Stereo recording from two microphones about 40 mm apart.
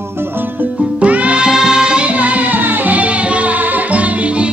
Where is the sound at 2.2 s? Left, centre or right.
Right.